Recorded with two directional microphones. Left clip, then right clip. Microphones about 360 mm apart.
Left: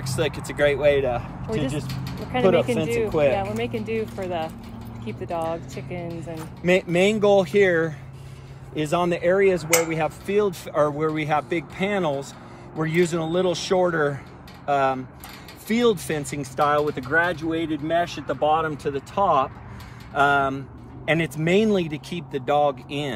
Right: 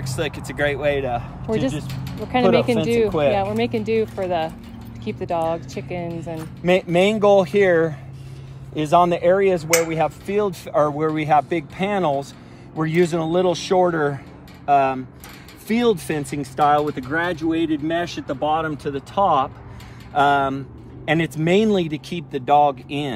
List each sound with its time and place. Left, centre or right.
0.0 s speech: centre
2.3 s speech: centre